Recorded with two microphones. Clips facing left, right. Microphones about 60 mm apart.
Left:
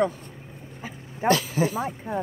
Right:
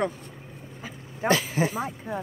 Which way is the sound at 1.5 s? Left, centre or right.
Right.